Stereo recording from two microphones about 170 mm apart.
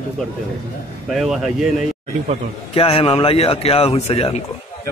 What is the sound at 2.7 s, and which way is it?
A man's voice, 35° left (ahead or behind).